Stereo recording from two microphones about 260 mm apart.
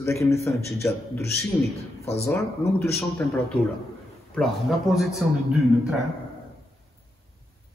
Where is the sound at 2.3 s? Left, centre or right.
Centre.